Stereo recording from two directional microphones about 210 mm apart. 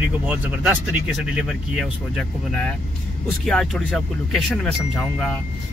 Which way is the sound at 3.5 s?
Centre (ahead or behind).